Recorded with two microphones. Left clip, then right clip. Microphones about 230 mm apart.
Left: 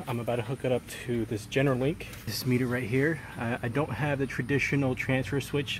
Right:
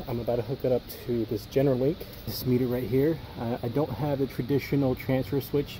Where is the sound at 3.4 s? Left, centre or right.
Centre.